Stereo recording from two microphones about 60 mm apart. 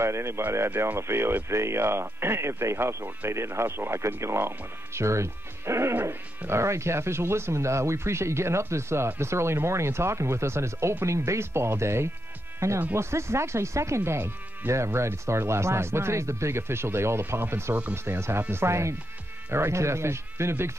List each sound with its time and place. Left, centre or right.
0.0 s speech: right